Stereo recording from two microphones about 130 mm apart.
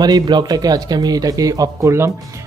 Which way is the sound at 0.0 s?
35° right (ahead or behind).